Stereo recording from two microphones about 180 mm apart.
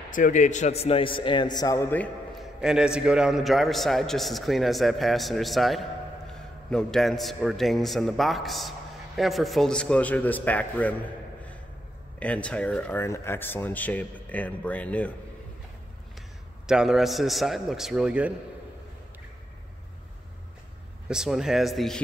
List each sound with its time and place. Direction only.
0.1 s a man's voice: 45° left (ahead or behind); by 2.0 s 15° left (ahead or behind)
2.3 s a man's voice: 5° right (ahead or behind)
12.2 s speech: 5° left (ahead or behind)
16.6 s a man's voice: 5° right (ahead or behind)
21.1 s a man's voice: 5° right (ahead or behind)